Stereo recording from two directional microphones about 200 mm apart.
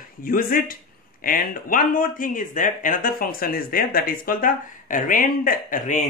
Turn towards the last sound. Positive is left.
turn(degrees=40)  # may be behind; listen again after turning